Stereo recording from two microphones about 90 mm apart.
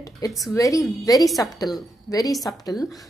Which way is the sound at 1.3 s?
Centre (ahead or behind).